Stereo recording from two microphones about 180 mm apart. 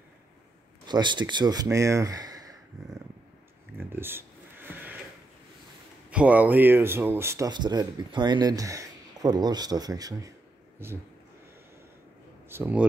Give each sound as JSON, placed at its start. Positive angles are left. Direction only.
{"t": 0.8, "sound": "speech", "side_deg": -25}
{"t": 2.8, "sound": "a sound", "side_deg": -20}
{"t": 6.0, "sound": "speech", "side_deg": -10}
{"t": 12.4, "sound": "speech", "side_deg": -10}